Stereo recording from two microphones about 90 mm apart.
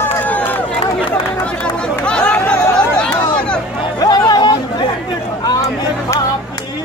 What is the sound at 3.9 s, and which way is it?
Chatter, 50° left (ahead or behind).